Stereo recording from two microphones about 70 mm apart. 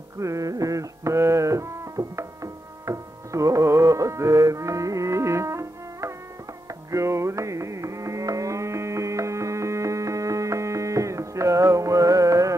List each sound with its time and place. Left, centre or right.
0.2 s music: right
6.9 s carnatic music: right